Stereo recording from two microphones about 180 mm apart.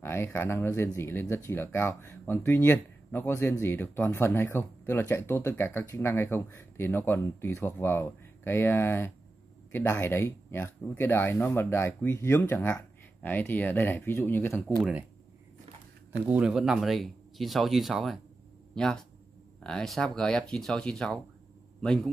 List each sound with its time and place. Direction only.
0.0 s speech: 15° left (ahead or behind)
14.8 s speech: 5° right (ahead or behind)
16.3 s speech: 5° right (ahead or behind)